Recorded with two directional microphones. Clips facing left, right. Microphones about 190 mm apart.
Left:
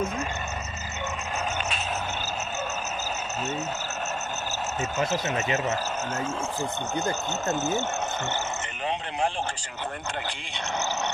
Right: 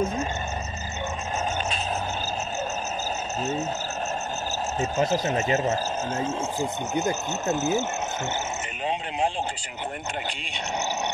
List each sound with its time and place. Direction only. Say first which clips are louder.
4.7 s speech: right 4 dB; 35° right (ahead or behind)
7.0 s speech: right 3 dB; 5° right (ahead or behind)